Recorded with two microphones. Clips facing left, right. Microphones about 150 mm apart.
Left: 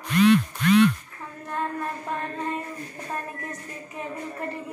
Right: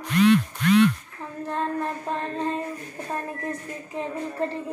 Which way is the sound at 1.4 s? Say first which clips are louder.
Right 2 dB; 25° right (ahead or behind).